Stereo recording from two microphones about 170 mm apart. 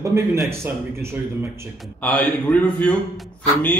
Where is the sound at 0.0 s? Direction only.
15° right (ahead or behind).